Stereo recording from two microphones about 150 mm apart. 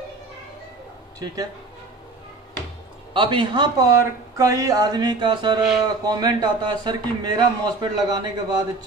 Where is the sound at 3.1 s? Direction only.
35° right (ahead or behind).